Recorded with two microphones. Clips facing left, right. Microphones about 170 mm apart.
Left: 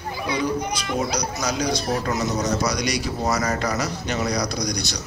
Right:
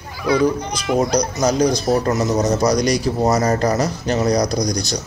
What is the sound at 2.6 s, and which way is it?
Speech, 40° right (ahead or behind).